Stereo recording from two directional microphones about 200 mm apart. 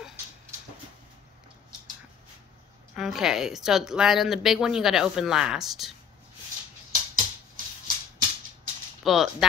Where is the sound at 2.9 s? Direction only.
Centre (ahead or behind).